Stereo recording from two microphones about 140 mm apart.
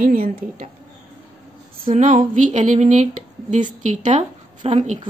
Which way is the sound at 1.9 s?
60° right (ahead or behind).